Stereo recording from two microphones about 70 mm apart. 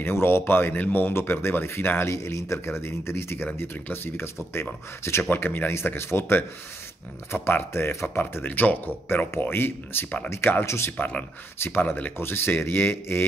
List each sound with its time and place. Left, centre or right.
0.0 s speech: left
5.3 s speech: left
10.6 s speech: left
10.9 s speech: left